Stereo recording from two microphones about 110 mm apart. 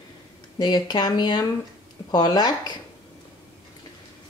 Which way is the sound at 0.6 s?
40° left (ahead or behind).